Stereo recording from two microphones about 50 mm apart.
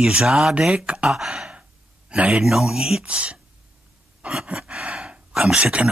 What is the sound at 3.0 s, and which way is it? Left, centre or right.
Speech, right.